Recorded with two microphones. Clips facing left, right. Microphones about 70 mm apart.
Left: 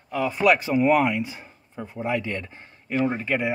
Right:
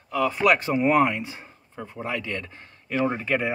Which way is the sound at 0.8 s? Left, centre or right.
Right.